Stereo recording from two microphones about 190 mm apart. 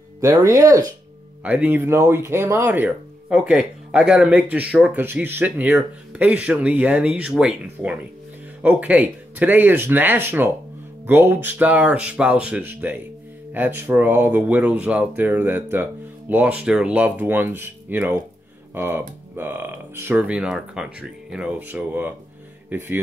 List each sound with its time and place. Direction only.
0.2 s speech: 15° right (ahead or behind)